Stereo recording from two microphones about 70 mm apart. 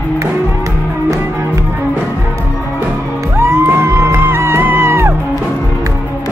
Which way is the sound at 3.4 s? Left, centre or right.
Right.